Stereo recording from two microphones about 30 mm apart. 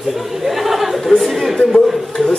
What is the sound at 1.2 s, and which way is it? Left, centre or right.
Chatter, centre.